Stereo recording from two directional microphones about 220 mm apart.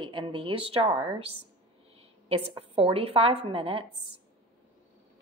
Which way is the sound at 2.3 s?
25° right (ahead or behind).